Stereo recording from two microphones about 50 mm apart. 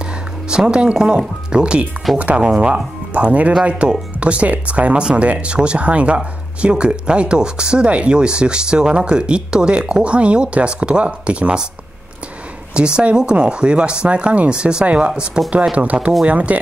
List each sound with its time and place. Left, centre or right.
0.0 s speech: centre
12.7 s speech: centre